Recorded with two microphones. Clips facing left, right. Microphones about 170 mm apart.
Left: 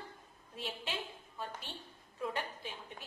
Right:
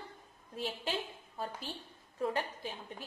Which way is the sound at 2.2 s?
40° right (ahead or behind).